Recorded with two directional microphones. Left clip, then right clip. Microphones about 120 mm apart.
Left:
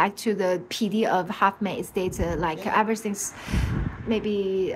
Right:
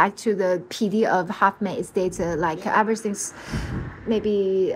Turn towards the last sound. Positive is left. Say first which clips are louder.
# right 4 dB
turn(degrees=-15)  # may be behind; listen again after turning